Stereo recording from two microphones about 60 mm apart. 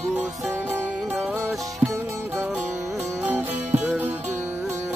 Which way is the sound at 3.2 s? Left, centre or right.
Right.